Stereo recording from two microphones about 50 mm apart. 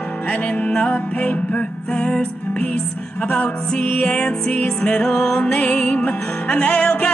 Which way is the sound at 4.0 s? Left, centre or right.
Left.